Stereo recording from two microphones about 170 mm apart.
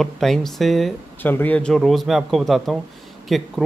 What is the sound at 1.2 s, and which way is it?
A man's voice, 10° left (ahead or behind).